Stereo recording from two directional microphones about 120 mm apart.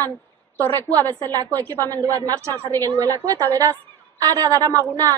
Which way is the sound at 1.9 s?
30° right (ahead or behind).